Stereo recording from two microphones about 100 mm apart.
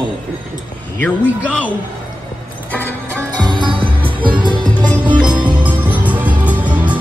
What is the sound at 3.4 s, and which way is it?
Music, 50° right (ahead or behind).